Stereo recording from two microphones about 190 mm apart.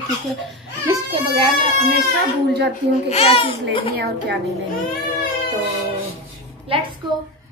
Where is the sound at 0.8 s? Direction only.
30° right (ahead or behind).